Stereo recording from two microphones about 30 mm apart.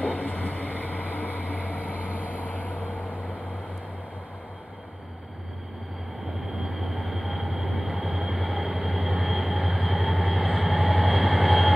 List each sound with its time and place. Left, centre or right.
0.0 s vehicle: left
6.4 s train: centre